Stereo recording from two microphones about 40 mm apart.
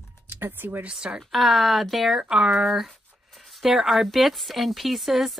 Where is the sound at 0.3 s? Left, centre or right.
Right.